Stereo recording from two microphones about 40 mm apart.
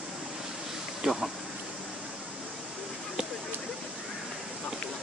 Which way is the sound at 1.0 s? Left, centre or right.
Centre.